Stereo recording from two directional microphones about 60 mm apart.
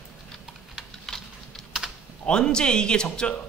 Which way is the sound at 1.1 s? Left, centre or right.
Centre.